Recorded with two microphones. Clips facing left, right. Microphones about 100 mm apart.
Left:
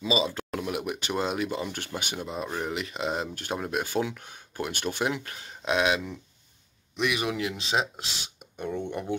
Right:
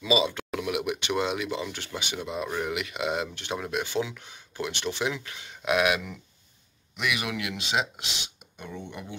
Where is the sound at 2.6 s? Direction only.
35° left (ahead or behind).